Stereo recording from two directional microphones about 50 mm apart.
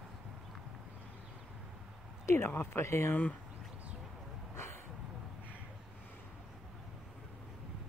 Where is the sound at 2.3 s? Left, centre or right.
Left.